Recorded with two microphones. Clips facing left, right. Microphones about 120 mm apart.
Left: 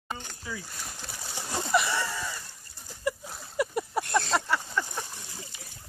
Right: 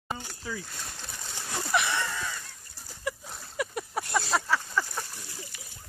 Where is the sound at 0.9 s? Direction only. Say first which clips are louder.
Left 2 dB; 10° left (ahead or behind).